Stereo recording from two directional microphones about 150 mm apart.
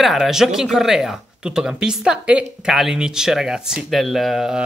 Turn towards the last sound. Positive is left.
turn(degrees=0)  # may be behind; listen again after turning